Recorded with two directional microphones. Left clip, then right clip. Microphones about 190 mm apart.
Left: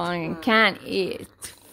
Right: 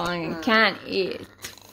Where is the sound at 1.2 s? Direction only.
Centre (ahead or behind).